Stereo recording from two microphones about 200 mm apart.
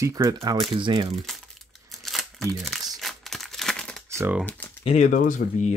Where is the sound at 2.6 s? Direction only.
Centre (ahead or behind).